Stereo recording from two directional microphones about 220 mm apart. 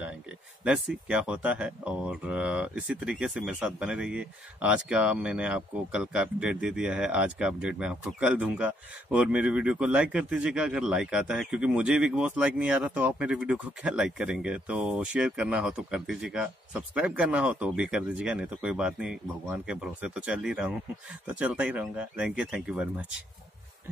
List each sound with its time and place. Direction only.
1.0 s speech: 5° right (ahead or behind)